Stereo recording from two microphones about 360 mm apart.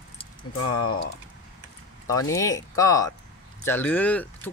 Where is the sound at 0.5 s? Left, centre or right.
Left.